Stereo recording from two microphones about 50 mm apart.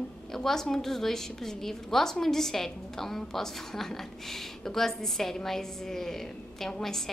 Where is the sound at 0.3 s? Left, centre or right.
Centre.